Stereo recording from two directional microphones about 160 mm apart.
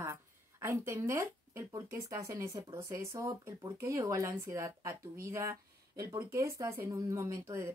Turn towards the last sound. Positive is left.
turn(degrees=-20)  # may be behind; listen again after turning